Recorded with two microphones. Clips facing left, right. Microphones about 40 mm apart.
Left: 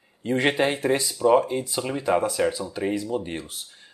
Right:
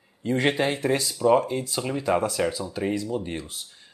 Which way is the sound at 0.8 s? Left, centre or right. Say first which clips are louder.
Right 1 dB; centre.